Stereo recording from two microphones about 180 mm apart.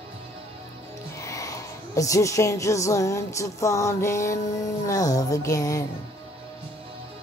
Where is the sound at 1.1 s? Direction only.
20° left (ahead or behind).